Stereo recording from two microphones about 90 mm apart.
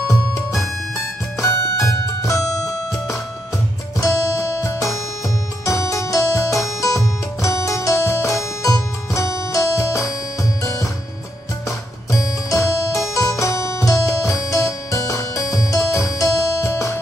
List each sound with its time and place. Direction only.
0.1 s music: 35° left (ahead or behind)
12.1 s music: 35° left (ahead or behind)